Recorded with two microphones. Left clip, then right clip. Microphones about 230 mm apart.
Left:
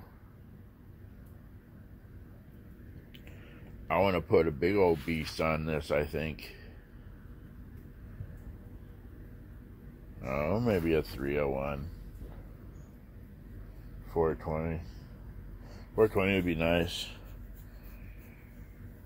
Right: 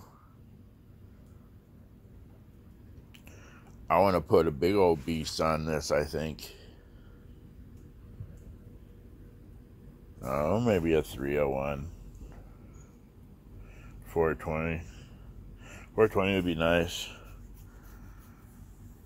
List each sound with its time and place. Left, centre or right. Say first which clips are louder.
3.8 s speech: right 4 dB; centre
10.2 s speech: right 3 dB; centre
14.1 s speech: right 2 dB; centre
15.9 s speech: right 1 dB; centre